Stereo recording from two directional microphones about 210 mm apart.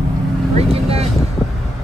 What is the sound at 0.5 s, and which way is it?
Vehicle, 30° right (ahead or behind).